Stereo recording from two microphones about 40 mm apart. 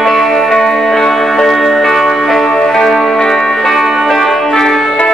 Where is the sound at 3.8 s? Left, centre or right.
Centre.